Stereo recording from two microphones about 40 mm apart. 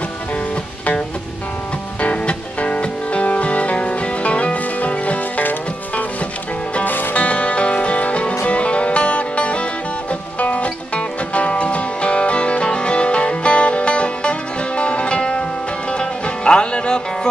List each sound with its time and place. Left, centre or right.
2.0 s music: left
5.4 s music: left
7.2 s music: left